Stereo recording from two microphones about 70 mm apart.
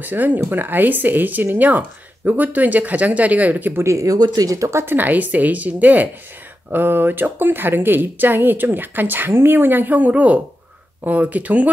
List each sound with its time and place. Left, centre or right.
0.0 s speech: right
3.8 s speech: right
4.9 s speech: right